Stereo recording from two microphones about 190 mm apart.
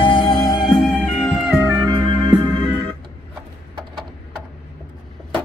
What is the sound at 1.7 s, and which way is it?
Music, 25° right (ahead or behind).